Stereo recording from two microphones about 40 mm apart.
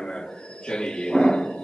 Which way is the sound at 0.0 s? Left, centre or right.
Centre.